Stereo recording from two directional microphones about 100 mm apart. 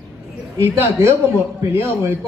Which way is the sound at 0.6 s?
25° right (ahead or behind).